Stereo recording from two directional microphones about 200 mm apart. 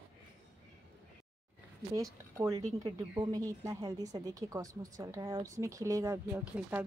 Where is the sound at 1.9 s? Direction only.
15° right (ahead or behind).